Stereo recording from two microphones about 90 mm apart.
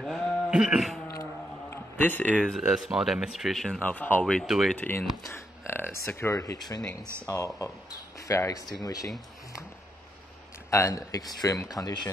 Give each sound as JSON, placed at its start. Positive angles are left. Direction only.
{"t": 0.0, "sound": "sheep", "side_deg": 5}
{"t": 0.5, "sound": "a sound", "side_deg": -10}
{"t": 2.0, "sound": "speech", "side_deg": 20}
{"t": 2.6, "sound": "speech", "side_deg": -5}
{"t": 3.8, "sound": "speech", "side_deg": 20}
{"t": 4.2, "sound": "speech", "side_deg": 5}
{"t": 4.7, "sound": "speech", "side_deg": 20}
{"t": 10.7, "sound": "speech", "side_deg": 35}